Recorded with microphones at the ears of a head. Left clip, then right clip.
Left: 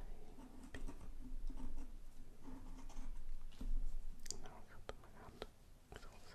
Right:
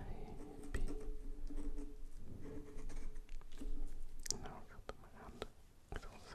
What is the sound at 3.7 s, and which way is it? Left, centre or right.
Clicking, right.